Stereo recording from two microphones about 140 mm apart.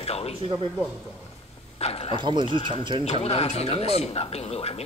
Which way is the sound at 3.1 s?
45° left (ahead or behind).